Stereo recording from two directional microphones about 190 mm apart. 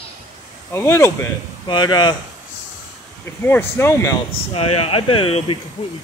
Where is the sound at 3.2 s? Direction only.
10° left (ahead or behind).